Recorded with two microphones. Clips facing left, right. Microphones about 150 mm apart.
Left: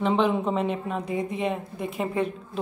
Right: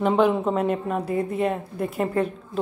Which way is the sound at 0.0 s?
5° right (ahead or behind).